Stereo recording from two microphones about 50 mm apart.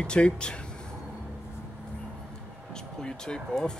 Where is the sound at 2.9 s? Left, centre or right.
Centre.